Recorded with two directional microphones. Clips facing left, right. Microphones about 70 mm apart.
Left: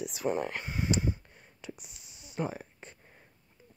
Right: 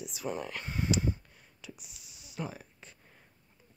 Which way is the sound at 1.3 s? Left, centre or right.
Left.